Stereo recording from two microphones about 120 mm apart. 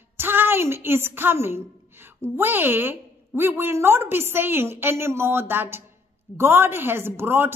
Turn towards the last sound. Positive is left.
turn(degrees=-20)  # may be behind; listen again after turning